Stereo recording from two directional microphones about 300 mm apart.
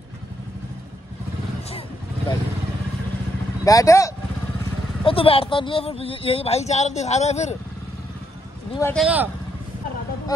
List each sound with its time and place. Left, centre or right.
3.6 s speech: centre
8.7 s speech: centre
9.0 s speech: centre